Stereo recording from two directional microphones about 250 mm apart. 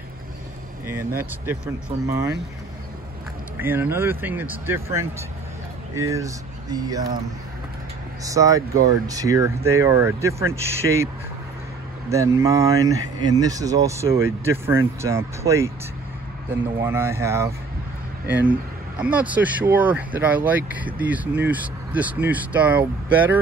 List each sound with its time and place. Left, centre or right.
0.8 s speech: centre
3.5 s speech: centre
8.2 s speech: centre
12.1 s speech: centre
16.8 s speech: centre